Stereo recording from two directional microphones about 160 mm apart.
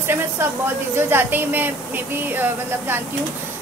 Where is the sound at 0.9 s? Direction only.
15° right (ahead or behind).